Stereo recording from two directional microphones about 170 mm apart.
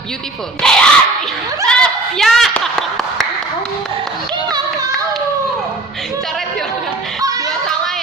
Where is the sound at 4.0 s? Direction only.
25° right (ahead or behind).